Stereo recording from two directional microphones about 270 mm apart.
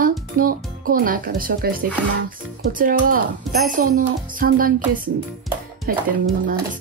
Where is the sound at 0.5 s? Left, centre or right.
Right.